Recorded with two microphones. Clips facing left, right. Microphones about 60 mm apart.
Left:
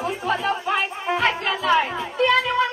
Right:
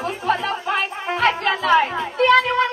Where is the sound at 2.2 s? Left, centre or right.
Right.